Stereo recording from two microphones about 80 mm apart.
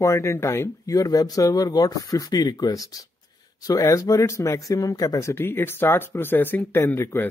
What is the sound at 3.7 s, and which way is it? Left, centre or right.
Speech, left.